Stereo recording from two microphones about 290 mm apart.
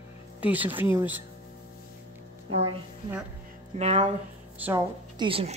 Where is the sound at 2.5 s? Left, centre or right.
Centre.